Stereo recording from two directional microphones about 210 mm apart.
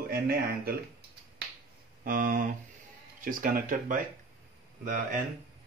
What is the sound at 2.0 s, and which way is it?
Speech, 40° right (ahead or behind).